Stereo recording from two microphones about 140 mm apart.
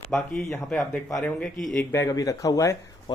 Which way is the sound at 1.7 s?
20° left (ahead or behind).